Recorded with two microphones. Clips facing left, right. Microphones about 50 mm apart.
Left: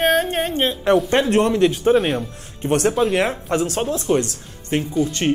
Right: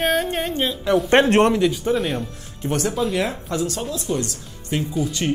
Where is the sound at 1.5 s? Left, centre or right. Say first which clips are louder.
Left 4 dB; left.